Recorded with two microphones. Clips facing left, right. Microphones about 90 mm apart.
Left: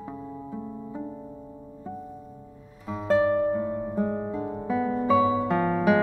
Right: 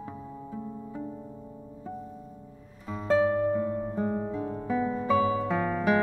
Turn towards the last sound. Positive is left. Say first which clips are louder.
# left 4 dB
turn(degrees=5)  # may be behind; listen again after turning